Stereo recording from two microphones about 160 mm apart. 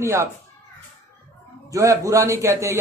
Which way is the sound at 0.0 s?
15° right (ahead or behind).